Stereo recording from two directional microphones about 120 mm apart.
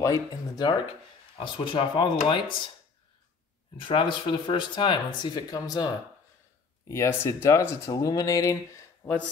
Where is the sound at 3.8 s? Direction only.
45° left (ahead or behind).